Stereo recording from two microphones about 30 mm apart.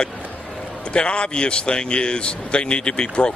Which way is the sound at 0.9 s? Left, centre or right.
Left.